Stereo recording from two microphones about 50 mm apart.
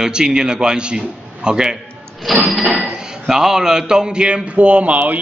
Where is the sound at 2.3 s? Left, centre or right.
Centre.